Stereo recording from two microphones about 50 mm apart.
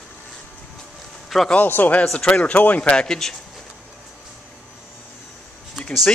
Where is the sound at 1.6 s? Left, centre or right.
Left.